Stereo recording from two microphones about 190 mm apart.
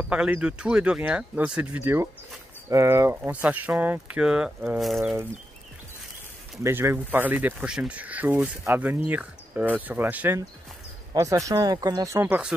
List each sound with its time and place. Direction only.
0.1 s speech: 5° right (ahead or behind)
6.6 s speech: 15° right (ahead or behind)